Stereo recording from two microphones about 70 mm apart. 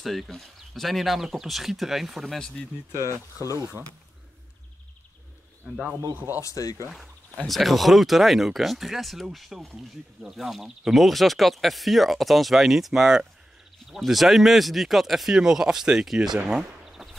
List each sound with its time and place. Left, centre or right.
0.0 s speech: centre
3.5 s speech: right
6.1 s speech: right
6.4 s speech: left
7.4 s speech: centre